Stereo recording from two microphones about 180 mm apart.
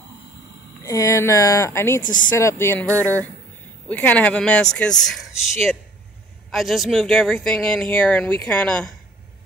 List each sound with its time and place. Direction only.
0.8 s speech: 15° left (ahead or behind)
2.9 s speech: 15° right (ahead or behind)
3.9 s speech: 10° left (ahead or behind)